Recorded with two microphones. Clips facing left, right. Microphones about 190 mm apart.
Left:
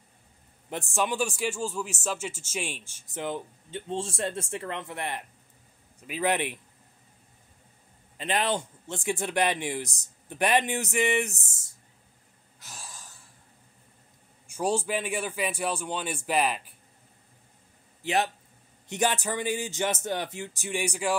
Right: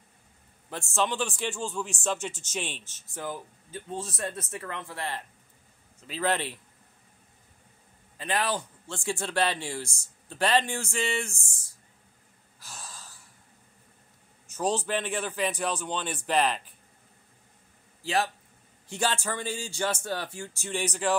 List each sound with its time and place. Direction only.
0.7 s speech: 15° left (ahead or behind)
8.2 s speech: 20° left (ahead or behind)
12.5 s wheeze: 20° left (ahead or behind)
14.5 s speech: 10° left (ahead or behind)
18.0 s speech: 20° left (ahead or behind)